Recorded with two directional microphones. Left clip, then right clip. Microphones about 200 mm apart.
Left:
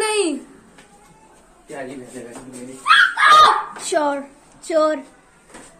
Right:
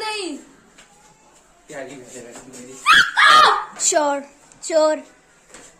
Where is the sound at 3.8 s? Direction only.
15° right (ahead or behind).